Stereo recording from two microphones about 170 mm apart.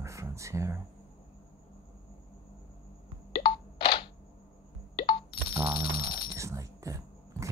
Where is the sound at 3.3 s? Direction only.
30° left (ahead or behind).